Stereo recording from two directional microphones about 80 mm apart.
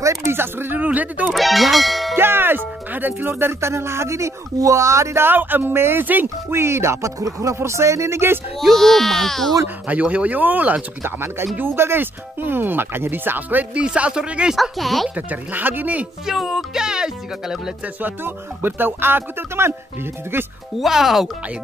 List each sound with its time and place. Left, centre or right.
0.0 s speech: right; by 1.2 s centre
1.2 s speech: centre
2.1 s speech: right
8.5 s speech: centre
9.8 s speech: centre
14.6 s speech: centre
15.0 s speech: centre
16.3 s speech: centre
17.8 s speech: right
20.7 s speech: centre